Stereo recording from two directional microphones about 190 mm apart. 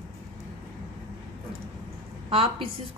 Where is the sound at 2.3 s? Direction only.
30° right (ahead or behind).